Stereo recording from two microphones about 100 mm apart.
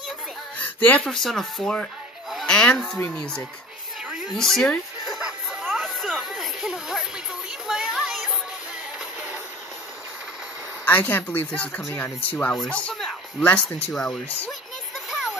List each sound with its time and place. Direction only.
0.6 s a sound: 15° left (ahead or behind)
1.0 s speech: 5° left (ahead or behind)
4.3 s music: 5° left (ahead or behind)
10.9 s speech: 20° left (ahead or behind)